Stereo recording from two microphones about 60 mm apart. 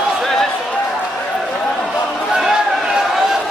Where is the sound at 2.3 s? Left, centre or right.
Centre.